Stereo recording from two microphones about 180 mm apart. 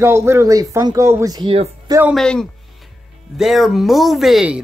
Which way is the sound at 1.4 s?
30° right (ahead or behind).